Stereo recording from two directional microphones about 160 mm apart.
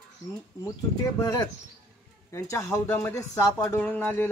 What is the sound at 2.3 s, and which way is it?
Speech, 20° left (ahead or behind).